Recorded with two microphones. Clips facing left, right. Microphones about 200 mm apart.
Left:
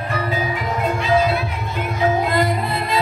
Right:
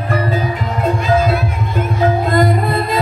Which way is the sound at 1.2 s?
45° right (ahead or behind).